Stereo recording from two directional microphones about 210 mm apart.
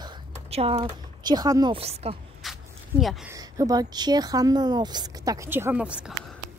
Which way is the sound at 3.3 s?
15° right (ahead or behind).